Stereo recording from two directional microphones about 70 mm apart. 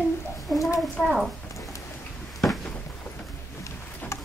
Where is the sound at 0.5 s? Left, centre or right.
Left.